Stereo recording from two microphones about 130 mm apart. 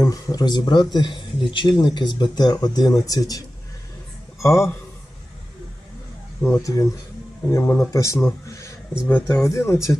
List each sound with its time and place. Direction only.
0.0 s speech: 30° left (ahead or behind)
6.4 s speech: 25° left (ahead or behind)